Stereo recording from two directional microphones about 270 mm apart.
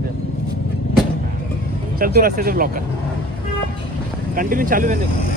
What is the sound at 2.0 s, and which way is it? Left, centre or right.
Speech, right.